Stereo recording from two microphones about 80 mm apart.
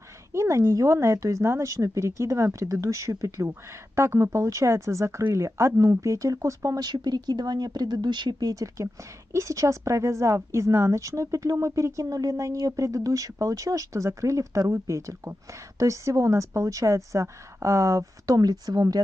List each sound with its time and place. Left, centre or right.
0.3 s a woman's voice: right
6.8 s speech: right
9.3 s a woman's voice: right